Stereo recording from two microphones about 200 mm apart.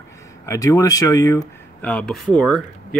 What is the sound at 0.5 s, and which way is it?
Speech, 15° left (ahead or behind).